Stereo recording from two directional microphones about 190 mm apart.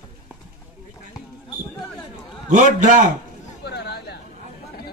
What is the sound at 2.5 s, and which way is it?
Speech, 40° right (ahead or behind).